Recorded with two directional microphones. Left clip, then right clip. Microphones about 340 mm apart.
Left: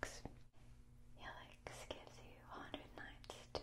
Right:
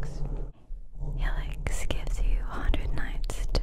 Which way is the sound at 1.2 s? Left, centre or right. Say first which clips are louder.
Right 15 dB; right.